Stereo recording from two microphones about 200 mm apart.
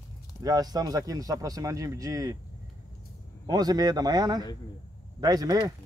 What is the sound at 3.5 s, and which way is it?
Speech, 20° right (ahead or behind).